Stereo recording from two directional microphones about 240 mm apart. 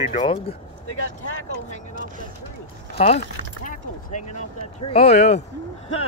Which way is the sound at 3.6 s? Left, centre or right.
Left.